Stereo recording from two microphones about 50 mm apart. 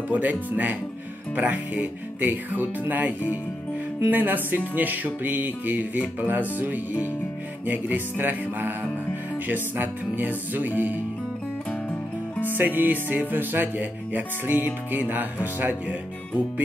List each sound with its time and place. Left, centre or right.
0.1 s music: right
12.5 s music: right